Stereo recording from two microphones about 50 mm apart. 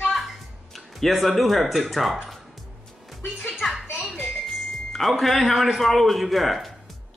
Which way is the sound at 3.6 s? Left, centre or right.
Centre.